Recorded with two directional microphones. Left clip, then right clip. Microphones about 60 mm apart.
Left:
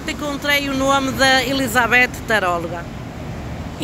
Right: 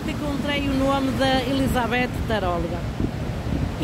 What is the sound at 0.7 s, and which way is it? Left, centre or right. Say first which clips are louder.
Speech: left 5 dB; centre.